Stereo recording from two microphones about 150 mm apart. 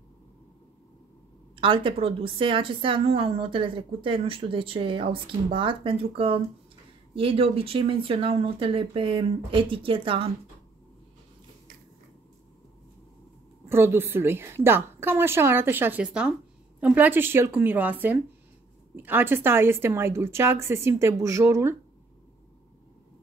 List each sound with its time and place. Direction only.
1.5 s a woman's voice: 35° right (ahead or behind)
13.7 s a woman's voice: 15° right (ahead or behind)